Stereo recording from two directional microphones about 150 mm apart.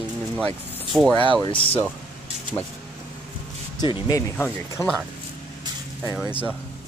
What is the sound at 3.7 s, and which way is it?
Speech, 30° left (ahead or behind).